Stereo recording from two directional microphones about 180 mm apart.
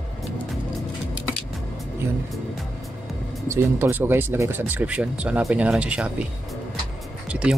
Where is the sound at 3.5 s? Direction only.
15° right (ahead or behind).